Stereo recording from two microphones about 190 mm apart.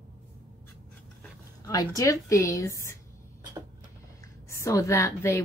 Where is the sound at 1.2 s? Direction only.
20° left (ahead or behind).